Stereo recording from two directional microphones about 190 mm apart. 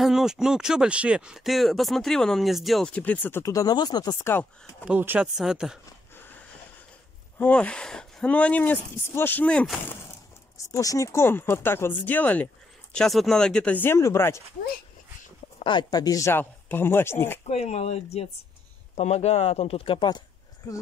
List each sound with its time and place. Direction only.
0.0 s speech: centre (ahead or behind)
4.8 s speech: 10° right (ahead or behind)
7.3 s speech: 5° left (ahead or behind)
15.6 s speech: 25° left (ahead or behind)
17.5 s speech: 35° left (ahead or behind); by 20.8 s 20° left (ahead or behind)